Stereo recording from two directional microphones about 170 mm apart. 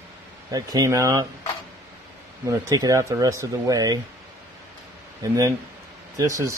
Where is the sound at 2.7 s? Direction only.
20° right (ahead or behind).